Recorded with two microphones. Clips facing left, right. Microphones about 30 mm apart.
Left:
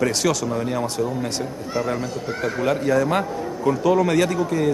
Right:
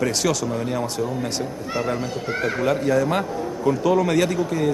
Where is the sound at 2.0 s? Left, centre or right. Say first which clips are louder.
Right 1 dB; centre.